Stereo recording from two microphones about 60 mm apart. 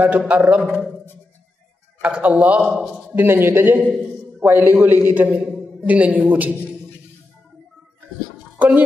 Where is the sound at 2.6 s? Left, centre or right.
Centre.